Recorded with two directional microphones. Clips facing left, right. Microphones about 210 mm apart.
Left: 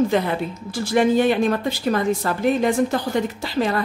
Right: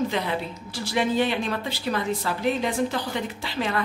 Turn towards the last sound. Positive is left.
turn(degrees=40)  # may be behind; listen again after turning